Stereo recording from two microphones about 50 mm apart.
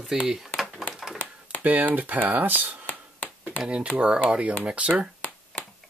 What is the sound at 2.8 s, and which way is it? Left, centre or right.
Finger snapping, left.